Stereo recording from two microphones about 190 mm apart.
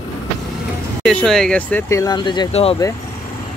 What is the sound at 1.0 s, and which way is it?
Speech, centre (ahead or behind).